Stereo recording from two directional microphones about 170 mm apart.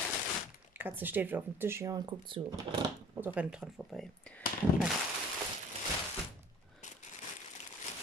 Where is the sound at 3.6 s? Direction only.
Centre (ahead or behind).